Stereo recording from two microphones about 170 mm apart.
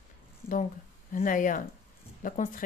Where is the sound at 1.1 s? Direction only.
50° left (ahead or behind).